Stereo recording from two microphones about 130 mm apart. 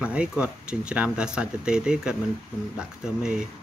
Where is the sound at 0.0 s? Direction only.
10° right (ahead or behind).